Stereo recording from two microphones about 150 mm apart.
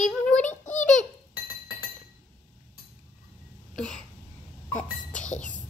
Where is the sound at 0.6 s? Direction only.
55° left (ahead or behind).